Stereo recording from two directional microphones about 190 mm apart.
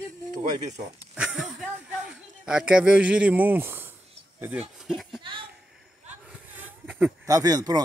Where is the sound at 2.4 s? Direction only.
5° right (ahead or behind).